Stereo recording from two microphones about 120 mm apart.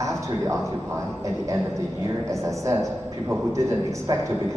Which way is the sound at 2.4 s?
25° right (ahead or behind).